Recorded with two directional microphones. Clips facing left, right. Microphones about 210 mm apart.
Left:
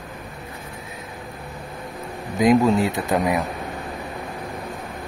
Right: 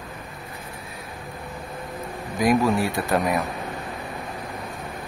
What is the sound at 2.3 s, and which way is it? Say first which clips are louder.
Speech: left 4 dB; 20° left (ahead or behind).